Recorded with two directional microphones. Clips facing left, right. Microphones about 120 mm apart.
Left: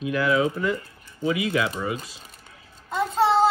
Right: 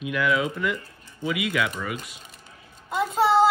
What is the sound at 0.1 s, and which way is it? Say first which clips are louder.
Speech: left 2 dB; 35° left (ahead or behind).